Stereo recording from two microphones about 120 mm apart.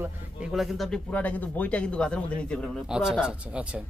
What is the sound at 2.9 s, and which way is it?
Speech, 5° right (ahead or behind).